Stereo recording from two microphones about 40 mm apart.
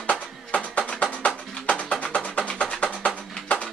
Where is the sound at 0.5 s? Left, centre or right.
Left.